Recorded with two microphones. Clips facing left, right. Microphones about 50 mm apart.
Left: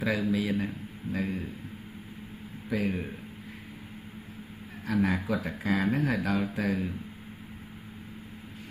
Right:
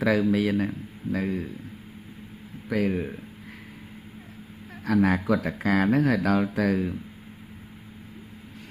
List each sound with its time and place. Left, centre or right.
0.0 s speech: right
1.2 s speech: right
2.7 s speech: right
4.8 s speech: right